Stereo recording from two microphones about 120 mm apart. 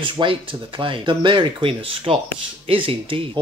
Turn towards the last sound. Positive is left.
turn(degrees=-50)  # may be behind; listen again after turning